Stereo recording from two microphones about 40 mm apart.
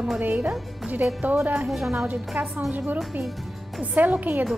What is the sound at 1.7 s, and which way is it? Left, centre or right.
Speech, centre.